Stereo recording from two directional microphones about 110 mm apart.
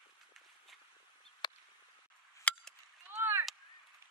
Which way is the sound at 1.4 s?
45° left (ahead or behind).